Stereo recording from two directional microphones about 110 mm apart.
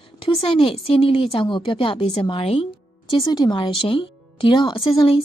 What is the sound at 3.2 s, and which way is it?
A woman's voice, 40° left (ahead or behind).